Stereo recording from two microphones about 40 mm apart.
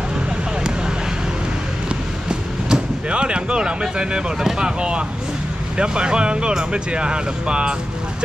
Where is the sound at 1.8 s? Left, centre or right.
Right.